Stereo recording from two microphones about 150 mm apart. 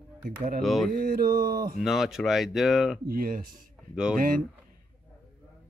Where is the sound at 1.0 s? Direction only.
80° right.